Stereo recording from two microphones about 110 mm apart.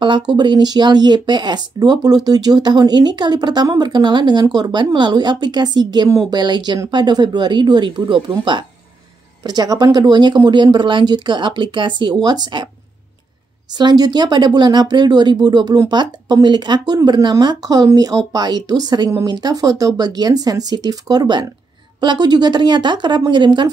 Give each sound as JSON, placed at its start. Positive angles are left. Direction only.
{"t": 0.0, "sound": "speech", "side_deg": -45}
{"t": 13.7, "sound": "speech", "side_deg": -40}